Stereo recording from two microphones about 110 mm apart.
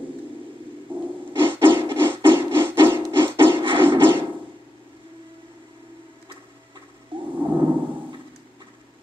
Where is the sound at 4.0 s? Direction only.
20° right (ahead or behind).